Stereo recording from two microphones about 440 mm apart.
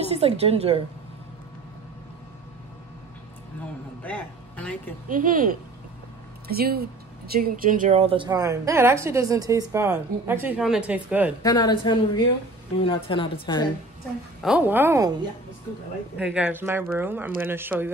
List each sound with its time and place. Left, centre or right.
0.1 s a woman's voice: centre
4.0 s a man's voice: centre
5.0 s a woman's voice: centre
11.4 s a woman's voice: centre
14.4 s speech: centre
16.2 s speech: centre